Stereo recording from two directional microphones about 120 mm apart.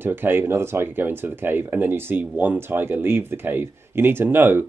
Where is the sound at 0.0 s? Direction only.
15° right (ahead or behind).